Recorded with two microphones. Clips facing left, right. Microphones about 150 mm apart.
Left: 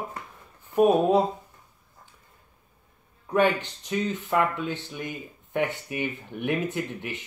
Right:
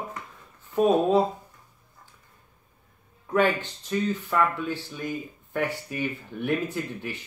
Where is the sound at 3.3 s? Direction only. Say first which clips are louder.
Left 1 dB; 20° left (ahead or behind).